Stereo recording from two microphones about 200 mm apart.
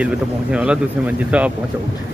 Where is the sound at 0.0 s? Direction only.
5° right (ahead or behind).